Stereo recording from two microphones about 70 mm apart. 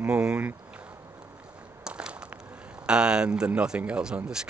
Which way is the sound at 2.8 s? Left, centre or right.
Centre.